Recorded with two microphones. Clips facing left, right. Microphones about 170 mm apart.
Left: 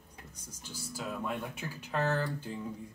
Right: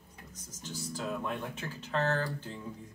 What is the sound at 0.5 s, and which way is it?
Speech, 10° left (ahead or behind).